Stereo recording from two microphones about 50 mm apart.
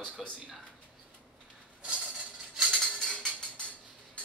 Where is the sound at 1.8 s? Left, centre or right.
Centre.